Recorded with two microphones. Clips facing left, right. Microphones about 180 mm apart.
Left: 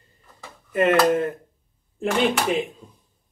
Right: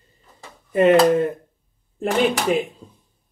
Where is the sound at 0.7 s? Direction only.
25° right (ahead or behind).